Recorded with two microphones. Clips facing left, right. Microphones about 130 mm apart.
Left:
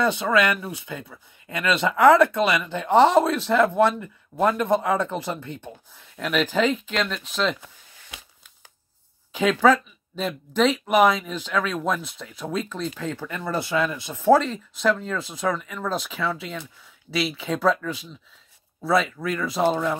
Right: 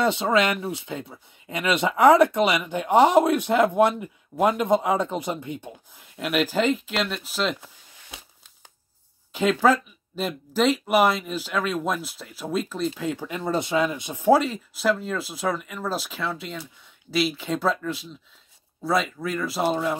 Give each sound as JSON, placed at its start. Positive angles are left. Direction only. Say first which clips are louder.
{"t": 0.0, "sound": "speech", "louder": "even", "side_deg": -20}
{"t": 9.3, "sound": "speech", "louder": "left 1 dB", "side_deg": -5}